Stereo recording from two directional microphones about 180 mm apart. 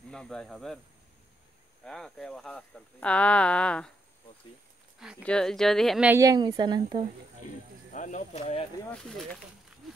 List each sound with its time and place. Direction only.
0.1 s speech: 5° left (ahead or behind)
1.9 s speech: 5° left (ahead or behind)
5.2 s speech: 5° left (ahead or behind)
6.1 s speech: 20° right (ahead or behind)
7.9 s speech: 45° left (ahead or behind)
8.8 s speech: 5° left (ahead or behind)